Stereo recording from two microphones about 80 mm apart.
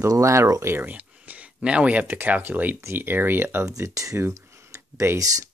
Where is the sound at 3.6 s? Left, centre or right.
Right.